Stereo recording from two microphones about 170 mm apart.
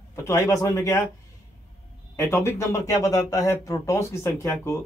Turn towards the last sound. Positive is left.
turn(degrees=15)  # may be behind; listen again after turning